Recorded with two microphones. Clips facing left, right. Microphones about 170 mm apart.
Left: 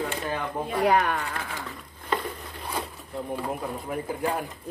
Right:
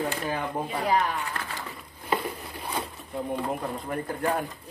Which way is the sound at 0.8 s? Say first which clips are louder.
Left 3 dB; 70° left (ahead or behind).